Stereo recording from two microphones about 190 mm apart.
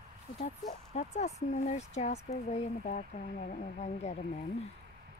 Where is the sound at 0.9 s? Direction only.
35° left (ahead or behind).